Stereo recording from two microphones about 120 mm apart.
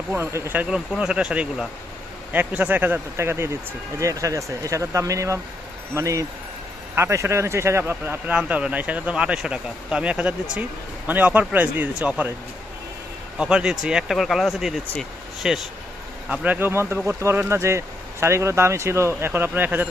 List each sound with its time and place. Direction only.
0.1 s speech: 20° right (ahead or behind)
13.4 s speech: 5° right (ahead or behind)
16.3 s speech: 15° right (ahead or behind)